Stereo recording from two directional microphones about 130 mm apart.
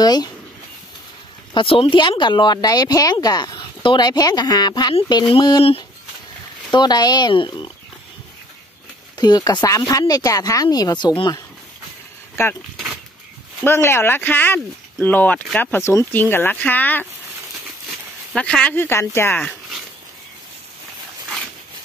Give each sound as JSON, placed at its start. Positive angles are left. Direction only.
{"t": 0.0, "sound": "speech", "side_deg": 30}
{"t": 1.5, "sound": "speech", "side_deg": 40}
{"t": 6.7, "sound": "speech", "side_deg": 30}
{"t": 9.1, "sound": "speech", "side_deg": 30}
{"t": 13.7, "sound": "speech", "side_deg": 20}
{"t": 18.3, "sound": "speech", "side_deg": 5}